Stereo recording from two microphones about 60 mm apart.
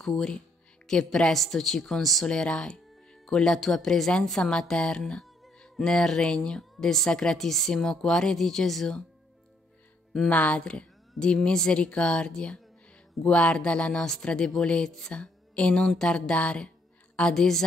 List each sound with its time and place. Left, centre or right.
0.0 s a woman's voice: centre
2.2 s a woman's voice: centre
10.3 s a woman's voice: left